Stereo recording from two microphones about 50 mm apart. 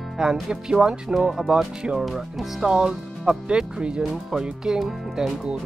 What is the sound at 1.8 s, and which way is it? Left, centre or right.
Speech, centre.